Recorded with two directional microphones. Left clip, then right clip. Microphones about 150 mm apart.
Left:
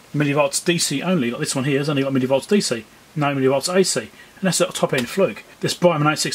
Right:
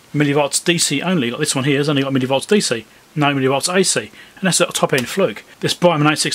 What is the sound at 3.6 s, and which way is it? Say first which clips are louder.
Speech: right 2 dB; 25° right (ahead or behind).